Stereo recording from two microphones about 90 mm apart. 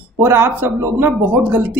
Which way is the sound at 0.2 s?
25° right (ahead or behind).